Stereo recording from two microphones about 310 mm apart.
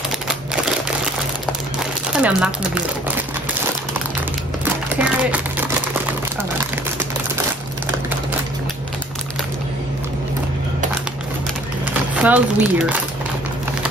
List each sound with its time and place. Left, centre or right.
2.1 s speech: centre
4.9 s a sound: centre
12.2 s speech: centre